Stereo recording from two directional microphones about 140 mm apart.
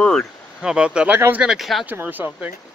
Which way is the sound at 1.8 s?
15° right (ahead or behind).